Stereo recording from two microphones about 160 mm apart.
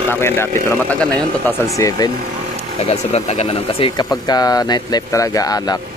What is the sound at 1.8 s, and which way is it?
Speech, 20° left (ahead or behind).